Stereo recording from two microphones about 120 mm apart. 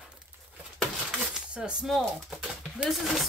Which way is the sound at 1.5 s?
10° right (ahead or behind).